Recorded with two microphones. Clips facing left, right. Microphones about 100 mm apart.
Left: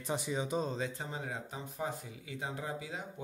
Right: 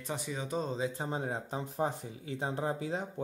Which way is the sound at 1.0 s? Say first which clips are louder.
Right 5 dB; 30° right (ahead or behind).